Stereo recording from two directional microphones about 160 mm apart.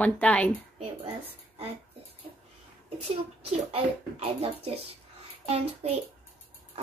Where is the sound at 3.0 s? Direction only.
40° right (ahead or behind).